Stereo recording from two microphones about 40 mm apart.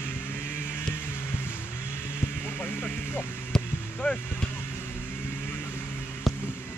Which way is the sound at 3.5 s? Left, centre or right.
Centre.